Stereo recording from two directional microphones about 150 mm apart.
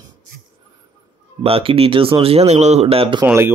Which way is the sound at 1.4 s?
40° right (ahead or behind).